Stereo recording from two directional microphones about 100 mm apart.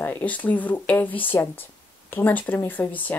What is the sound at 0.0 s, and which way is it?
Speech, 15° left (ahead or behind).